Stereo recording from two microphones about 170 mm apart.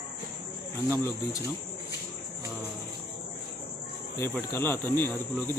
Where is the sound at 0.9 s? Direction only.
15° left (ahead or behind).